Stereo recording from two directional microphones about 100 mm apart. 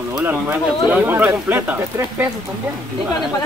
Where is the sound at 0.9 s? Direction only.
20° right (ahead or behind).